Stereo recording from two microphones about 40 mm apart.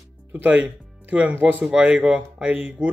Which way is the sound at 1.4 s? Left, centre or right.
Right.